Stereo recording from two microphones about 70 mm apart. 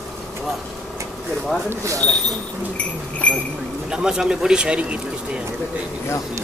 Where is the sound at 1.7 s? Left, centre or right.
Right.